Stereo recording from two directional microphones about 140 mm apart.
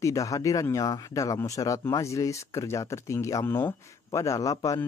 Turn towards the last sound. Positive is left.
turn(degrees=25)  # may be behind; listen again after turning